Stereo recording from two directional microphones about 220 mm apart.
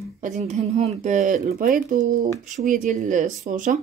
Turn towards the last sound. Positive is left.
turn(degrees=-35)  # may be behind; listen again after turning